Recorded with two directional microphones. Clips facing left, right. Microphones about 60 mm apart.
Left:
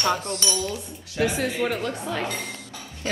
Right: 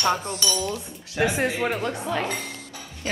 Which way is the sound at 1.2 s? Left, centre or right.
Right.